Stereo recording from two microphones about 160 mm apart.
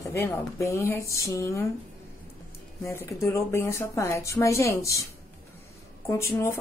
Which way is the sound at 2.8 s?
15° left (ahead or behind).